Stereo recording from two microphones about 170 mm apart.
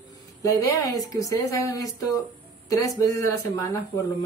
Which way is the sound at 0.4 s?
20° left (ahead or behind).